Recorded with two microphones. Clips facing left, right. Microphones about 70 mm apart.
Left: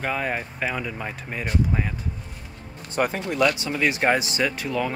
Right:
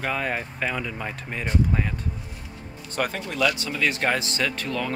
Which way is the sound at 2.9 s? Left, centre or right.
Left.